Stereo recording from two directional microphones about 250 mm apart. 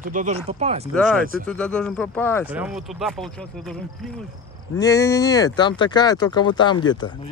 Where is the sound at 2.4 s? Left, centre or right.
Centre.